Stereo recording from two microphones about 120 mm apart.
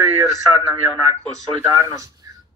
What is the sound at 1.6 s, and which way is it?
Speech, 30° right (ahead or behind).